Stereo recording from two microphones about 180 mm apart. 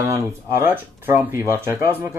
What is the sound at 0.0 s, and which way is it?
Speech, 15° right (ahead or behind).